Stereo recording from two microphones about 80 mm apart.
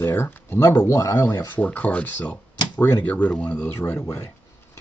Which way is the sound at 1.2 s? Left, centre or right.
Left.